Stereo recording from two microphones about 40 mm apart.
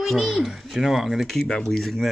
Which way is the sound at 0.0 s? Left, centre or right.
Centre.